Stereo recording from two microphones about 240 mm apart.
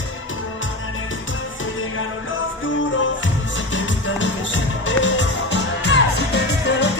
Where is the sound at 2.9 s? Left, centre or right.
Left.